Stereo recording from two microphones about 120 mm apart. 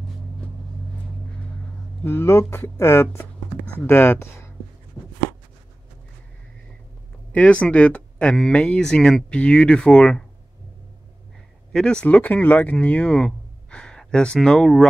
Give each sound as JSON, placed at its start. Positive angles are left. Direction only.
{"t": 2.0, "sound": "speech", "side_deg": 20}
{"t": 5.0, "sound": "a sound", "side_deg": 35}
{"t": 7.3, "sound": "speech", "side_deg": 10}
{"t": 11.7, "sound": "speech", "side_deg": 5}